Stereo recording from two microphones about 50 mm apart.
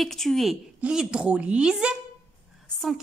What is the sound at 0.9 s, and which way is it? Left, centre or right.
A woman's voice, centre.